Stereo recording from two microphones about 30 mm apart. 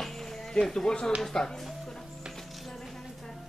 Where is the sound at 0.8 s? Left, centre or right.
Left.